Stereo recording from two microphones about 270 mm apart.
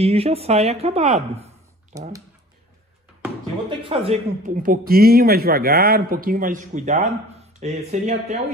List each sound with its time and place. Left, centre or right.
0.0 s speech: right
3.8 s speech: right